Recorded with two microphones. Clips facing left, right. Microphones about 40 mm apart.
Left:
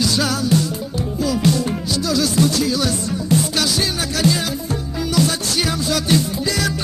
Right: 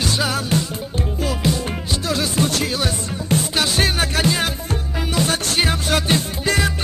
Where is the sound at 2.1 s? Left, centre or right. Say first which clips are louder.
Left 3 dB; right.